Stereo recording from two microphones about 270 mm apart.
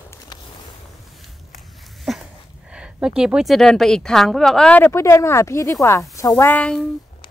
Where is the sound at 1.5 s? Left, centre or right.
Centre.